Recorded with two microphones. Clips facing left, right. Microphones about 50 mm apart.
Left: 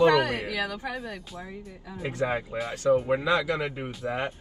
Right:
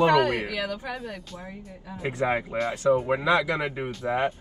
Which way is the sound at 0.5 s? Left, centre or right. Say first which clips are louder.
Even; left.